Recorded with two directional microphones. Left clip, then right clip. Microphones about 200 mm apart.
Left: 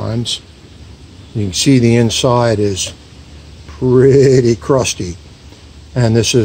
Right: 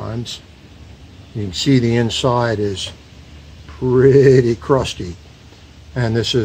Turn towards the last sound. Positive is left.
turn(degrees=25)  # may be behind; listen again after turning